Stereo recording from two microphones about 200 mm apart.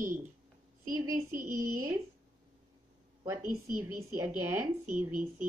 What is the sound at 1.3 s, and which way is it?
Speech, 40° right (ahead or behind).